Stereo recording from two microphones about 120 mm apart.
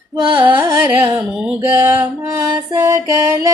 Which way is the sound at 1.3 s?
5° right (ahead or behind).